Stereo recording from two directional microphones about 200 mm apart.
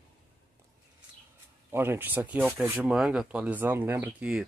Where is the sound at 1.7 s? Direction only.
10° right (ahead or behind).